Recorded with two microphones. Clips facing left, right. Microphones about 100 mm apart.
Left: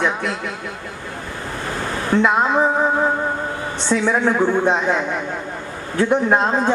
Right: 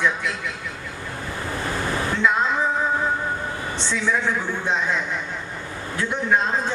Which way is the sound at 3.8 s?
35° left (ahead or behind).